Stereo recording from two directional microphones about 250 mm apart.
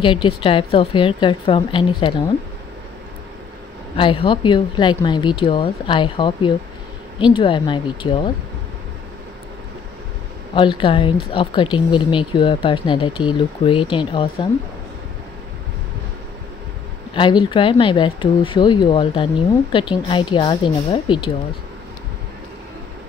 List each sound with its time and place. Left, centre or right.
0.0 s speech: centre
3.9 s speech: left
10.5 s speech: centre
17.1 s speech: centre